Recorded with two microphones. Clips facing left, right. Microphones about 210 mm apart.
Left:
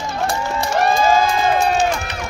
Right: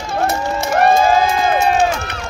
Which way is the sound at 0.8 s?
55° right (ahead or behind).